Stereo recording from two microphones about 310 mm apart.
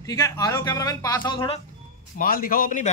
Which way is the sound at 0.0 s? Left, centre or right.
Centre.